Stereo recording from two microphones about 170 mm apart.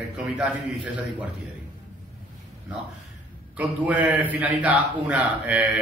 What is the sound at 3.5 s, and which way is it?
A man's voice, 10° right (ahead or behind).